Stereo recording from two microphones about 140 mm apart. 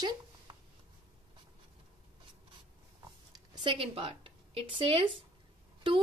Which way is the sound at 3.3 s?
30° right (ahead or behind).